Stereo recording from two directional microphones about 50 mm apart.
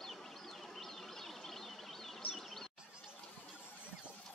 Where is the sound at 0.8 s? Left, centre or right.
Centre.